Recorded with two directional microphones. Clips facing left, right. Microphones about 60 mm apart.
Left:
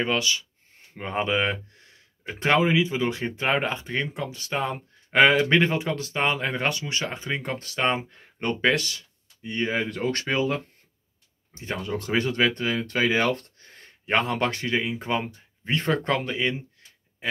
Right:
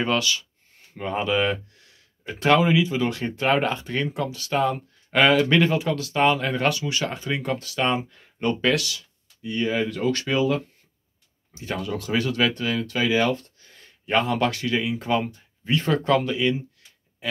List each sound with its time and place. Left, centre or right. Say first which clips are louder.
0.0 s speech: right 1 dB; left
11.6 s speech: right 1 dB; left
12.8 s speech: right 1 dB; left
15.9 s speech: right 4 dB; left
16.8 s a sound: left 1 dB; left